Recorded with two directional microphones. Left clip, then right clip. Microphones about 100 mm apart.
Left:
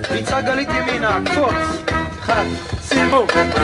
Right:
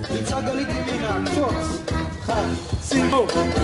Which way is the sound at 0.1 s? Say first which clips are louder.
Left 6 dB; 15° left (ahead or behind).